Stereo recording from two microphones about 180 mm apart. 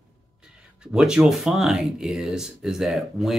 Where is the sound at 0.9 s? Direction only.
5° right (ahead or behind).